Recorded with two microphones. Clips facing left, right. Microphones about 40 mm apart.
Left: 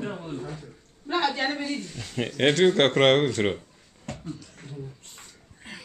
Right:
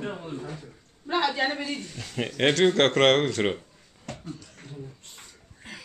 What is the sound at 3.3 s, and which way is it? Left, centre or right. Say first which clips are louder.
Speech: even; centre.